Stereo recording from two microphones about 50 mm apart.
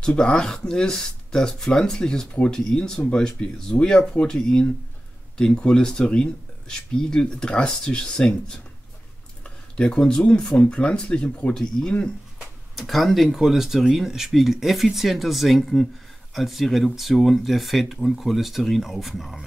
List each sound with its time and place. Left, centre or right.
0.2 s speech: centre
12.7 s speech: centre